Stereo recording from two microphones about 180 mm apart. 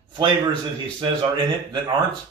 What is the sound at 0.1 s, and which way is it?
A man's voice, 25° right (ahead or behind).